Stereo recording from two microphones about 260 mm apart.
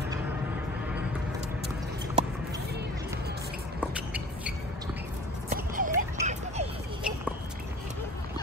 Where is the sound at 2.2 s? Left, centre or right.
Right.